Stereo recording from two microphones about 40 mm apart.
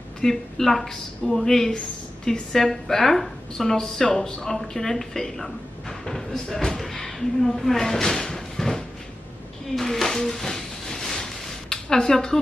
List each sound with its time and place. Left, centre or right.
0.2 s speech: centre
9.8 s a sound: centre
11.7 s speech: centre